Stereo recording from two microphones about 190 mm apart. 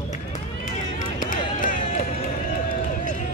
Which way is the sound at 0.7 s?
45° left (ahead or behind).